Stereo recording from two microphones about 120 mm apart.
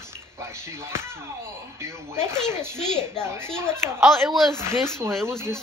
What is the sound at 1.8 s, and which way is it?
Speech, 20° right (ahead or behind).